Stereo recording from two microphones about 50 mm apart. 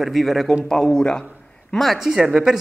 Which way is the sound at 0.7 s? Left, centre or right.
Centre.